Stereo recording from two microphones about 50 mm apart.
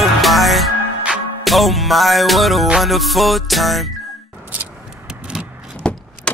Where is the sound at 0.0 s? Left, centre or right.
Centre.